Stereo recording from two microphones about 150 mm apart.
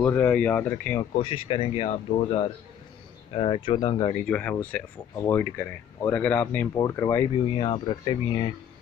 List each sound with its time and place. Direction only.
0.0 s speech: 15° left (ahead or behind)
1.2 s speech: 35° left (ahead or behind)
3.3 s speech: 35° left (ahead or behind)
4.1 s speech: 10° left (ahead or behind)
7.5 s speech: 35° left (ahead or behind)